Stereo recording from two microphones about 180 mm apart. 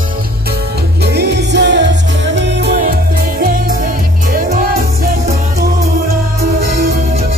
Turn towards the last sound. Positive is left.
turn(degrees=-55)  # may be behind; listen again after turning